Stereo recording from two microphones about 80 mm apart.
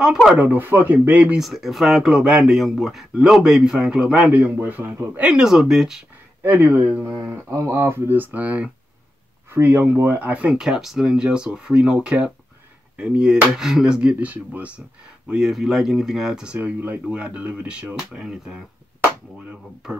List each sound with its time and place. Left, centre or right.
0.0 s speech: centre
0.4 s speech: right
1.4 s speech: centre; by 5.3 s right
5.3 s speech: centre
6.4 s speech: right
7.1 s speech: right; by 16.5 s centre
16.5 s speech: right